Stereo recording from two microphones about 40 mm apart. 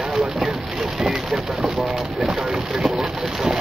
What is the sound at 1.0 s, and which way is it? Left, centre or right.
Bird, centre.